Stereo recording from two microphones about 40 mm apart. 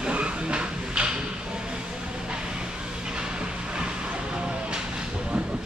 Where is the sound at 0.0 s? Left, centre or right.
Right.